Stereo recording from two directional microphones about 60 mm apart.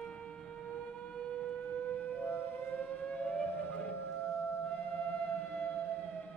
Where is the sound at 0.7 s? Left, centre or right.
Centre.